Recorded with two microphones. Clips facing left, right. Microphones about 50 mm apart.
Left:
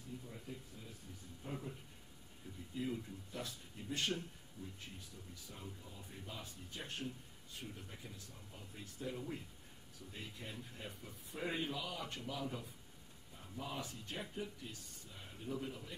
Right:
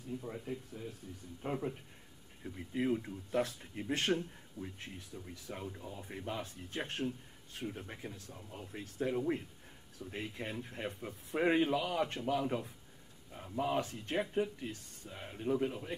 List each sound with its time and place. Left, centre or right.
0.3 s speech: right
1.4 s speech: right